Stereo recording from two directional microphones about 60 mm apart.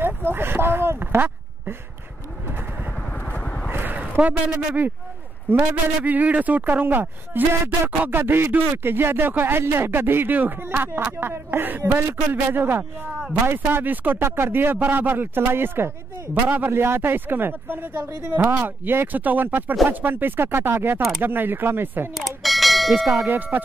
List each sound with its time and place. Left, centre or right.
0.0 s a sound: right
3.1 s vehicle: left
3.7 s speech: right
6.0 s speech: right
16.4 s a man's voice: right
16.7 s speech: right
22.1 s bell: centre
23.2 s speech: right